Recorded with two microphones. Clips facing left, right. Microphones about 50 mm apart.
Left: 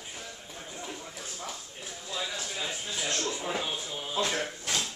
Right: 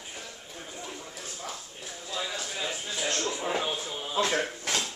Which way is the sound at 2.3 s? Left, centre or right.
Centre.